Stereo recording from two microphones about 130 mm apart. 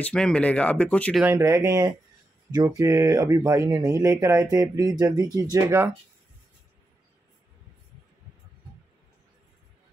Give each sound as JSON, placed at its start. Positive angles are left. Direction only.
{"t": 0.0, "sound": "speech", "side_deg": 5}
{"t": 1.2, "sound": "speech", "side_deg": -20}